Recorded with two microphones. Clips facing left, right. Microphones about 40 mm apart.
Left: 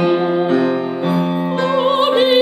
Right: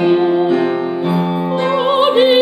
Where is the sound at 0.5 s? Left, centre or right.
Right.